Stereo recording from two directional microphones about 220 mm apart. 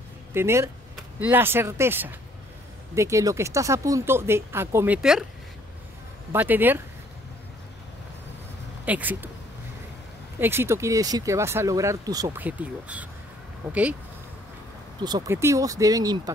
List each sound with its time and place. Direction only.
0.3 s speech: 10° right (ahead or behind)
6.3 s speech: 10° right (ahead or behind)
8.8 s speech: 5° right (ahead or behind)
10.4 s speech: 10° right (ahead or behind)
15.0 s speech: 20° right (ahead or behind)